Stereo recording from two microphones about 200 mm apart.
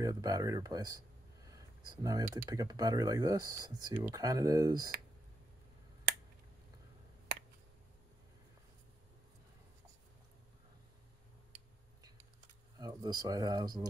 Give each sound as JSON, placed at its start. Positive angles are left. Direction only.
{"t": 0.0, "sound": "speech", "side_deg": -20}
{"t": 12.7, "sound": "speech", "side_deg": -20}